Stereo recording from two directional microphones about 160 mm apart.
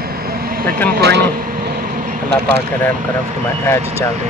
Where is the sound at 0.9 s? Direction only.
90° right.